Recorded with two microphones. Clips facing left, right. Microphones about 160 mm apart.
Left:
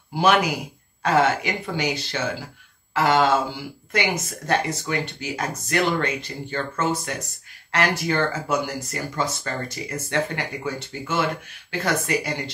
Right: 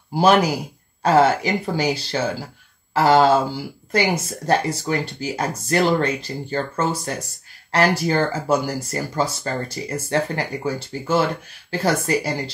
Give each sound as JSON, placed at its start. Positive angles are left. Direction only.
{"t": 0.1, "sound": "speech", "side_deg": -35}